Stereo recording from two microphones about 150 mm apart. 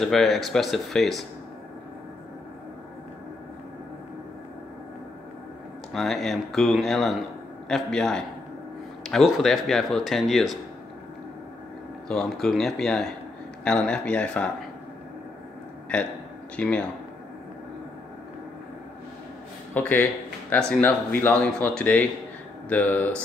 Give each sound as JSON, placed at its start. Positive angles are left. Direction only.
{"t": 0.0, "sound": "speech", "side_deg": 0}
{"t": 5.9, "sound": "speech", "side_deg": 0}
{"t": 12.1, "sound": "speech", "side_deg": 5}
{"t": 15.9, "sound": "speech", "side_deg": 5}
{"t": 19.7, "sound": "speech", "side_deg": 10}